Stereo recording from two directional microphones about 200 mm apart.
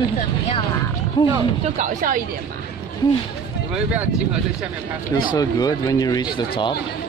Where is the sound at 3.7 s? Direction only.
5° right (ahead or behind).